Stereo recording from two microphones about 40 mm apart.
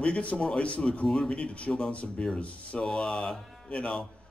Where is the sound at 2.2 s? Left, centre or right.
Left.